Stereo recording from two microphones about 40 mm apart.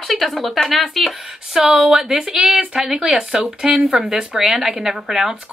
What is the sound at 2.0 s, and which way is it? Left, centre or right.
Speech, centre.